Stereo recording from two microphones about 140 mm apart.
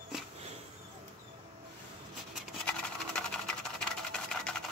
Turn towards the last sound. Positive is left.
turn(degrees=5)  # may be behind; listen again after turning